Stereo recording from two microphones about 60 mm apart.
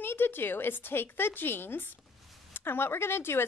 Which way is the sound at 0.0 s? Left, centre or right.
Left.